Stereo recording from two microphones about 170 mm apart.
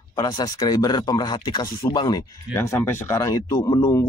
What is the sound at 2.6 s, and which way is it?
Speech, 15° left (ahead or behind).